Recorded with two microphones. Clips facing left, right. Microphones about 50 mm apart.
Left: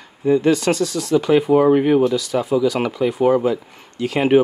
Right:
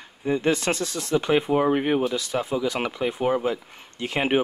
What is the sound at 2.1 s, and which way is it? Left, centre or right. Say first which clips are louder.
Speech: left 7 dB; right.